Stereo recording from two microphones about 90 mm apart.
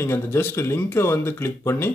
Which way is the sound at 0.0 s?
30° left (ahead or behind).